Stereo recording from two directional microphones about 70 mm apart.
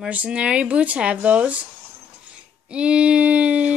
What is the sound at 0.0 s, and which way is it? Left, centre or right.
Speech, centre.